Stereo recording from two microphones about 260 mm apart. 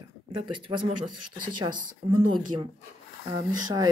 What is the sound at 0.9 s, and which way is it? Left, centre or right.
Speech, right.